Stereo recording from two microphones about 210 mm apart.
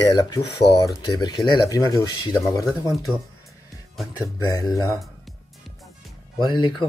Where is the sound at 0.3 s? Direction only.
15° left (ahead or behind).